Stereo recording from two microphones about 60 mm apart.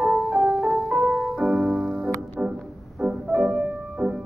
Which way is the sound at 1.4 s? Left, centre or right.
Right.